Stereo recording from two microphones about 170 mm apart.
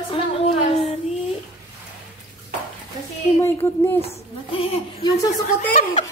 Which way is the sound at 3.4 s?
15° left (ahead or behind).